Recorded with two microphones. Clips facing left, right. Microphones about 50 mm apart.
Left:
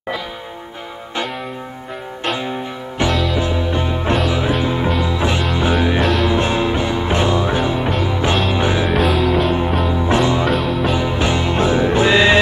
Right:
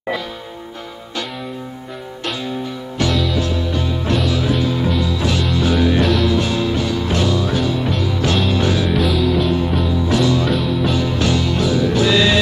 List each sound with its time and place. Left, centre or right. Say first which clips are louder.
2.2 s music: left 3 dB; left
3.1 s music: left 1 dB; centre
3.3 s music: left 1 dB; left
5.9 s music: even; centre
6.2 s music: left 1 dB; left
8.9 s music: left 1 dB; centre
9.8 s music: left 1 dB; left
10.5 s music: left 1 dB; centre
10.9 s music: even; left